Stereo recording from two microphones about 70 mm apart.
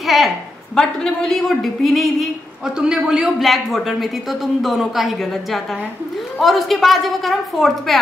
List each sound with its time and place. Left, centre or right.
0.0 s a sound: centre
0.7 s a woman's voice: centre
2.6 s a man's voice: centre